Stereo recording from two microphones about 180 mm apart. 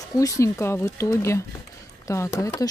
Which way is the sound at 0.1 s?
20° left (ahead or behind).